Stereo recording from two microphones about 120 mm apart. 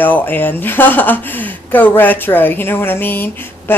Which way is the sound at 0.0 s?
15° left (ahead or behind).